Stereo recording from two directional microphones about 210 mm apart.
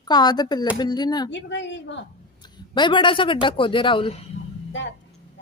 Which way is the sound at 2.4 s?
20° left (ahead or behind).